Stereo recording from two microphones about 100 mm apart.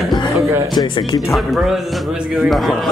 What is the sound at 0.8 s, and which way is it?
Speech, 55° left (ahead or behind).